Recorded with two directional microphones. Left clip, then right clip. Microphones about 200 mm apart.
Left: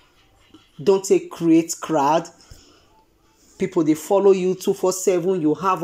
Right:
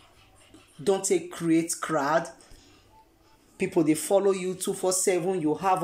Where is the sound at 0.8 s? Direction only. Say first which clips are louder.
Left 8 dB; centre (ahead or behind).